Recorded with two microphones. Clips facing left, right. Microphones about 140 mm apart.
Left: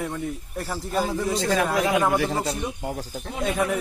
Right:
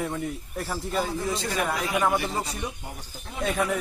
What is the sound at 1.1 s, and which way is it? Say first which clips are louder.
A man's voice: left 5 dB; 80° left.